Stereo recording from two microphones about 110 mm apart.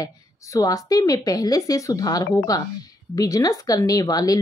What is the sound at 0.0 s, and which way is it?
A woman's voice, 30° left (ahead or behind).